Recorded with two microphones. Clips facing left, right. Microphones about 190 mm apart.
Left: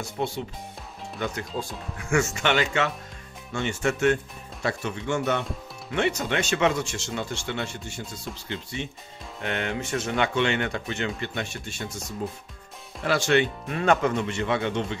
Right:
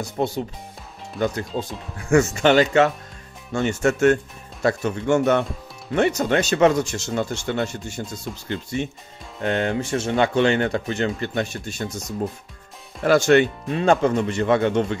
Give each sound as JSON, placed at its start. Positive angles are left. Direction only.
{"t": 0.2, "sound": "speech", "side_deg": -40}
{"t": 2.0, "sound": "speech", "side_deg": -40}
{"t": 13.0, "sound": "speech", "side_deg": -45}
{"t": 13.7, "sound": "speech", "side_deg": -30}